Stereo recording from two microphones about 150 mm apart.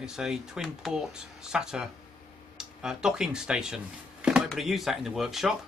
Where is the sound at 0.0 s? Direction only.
5° right (ahead or behind).